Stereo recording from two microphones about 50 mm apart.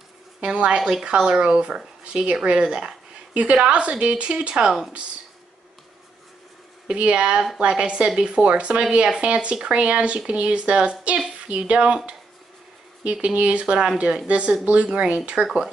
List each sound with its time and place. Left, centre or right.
0.4 s speech: right
6.9 s speech: right
13.0 s speech: right